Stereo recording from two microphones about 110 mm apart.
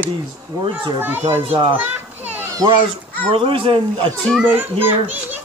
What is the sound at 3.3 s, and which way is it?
Speech, 50° right (ahead or behind).